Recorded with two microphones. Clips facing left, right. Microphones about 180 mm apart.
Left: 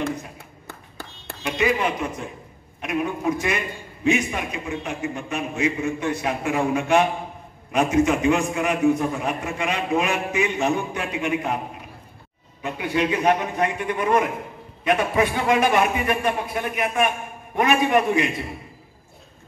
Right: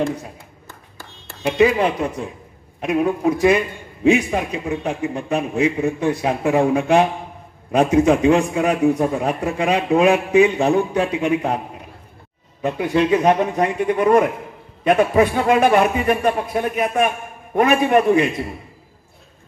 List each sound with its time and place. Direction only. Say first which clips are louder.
0.4 s a sound: left 1 dB; 65° left (ahead or behind)
1.4 s a man's voice: right 7 dB; 35° right (ahead or behind)
12.6 s a man's voice: right 6 dB; 35° right (ahead or behind)